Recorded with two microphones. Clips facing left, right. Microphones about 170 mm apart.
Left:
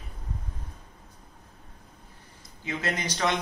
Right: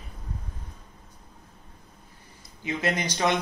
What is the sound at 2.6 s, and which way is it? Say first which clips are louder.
Speech: right 3 dB; 15° right (ahead or behind).